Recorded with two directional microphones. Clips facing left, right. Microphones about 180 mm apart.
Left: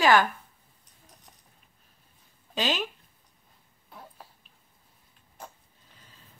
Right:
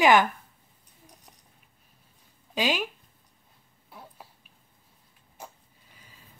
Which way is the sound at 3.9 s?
10° right (ahead or behind).